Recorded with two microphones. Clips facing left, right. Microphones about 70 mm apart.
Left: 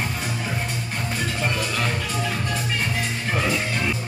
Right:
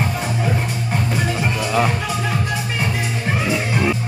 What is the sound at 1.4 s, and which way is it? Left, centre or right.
Music, centre.